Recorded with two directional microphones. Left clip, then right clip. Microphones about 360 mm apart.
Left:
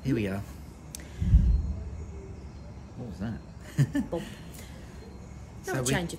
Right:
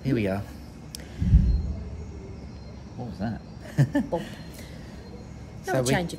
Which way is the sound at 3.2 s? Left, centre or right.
Centre.